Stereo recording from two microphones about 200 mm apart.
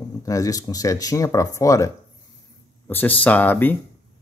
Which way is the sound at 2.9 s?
10° left (ahead or behind).